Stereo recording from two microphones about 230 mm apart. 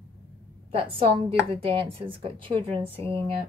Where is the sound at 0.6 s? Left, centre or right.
Right.